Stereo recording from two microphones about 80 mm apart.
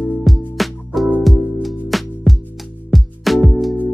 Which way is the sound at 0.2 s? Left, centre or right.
Centre.